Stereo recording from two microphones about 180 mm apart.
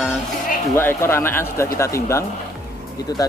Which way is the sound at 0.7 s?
15° left (ahead or behind).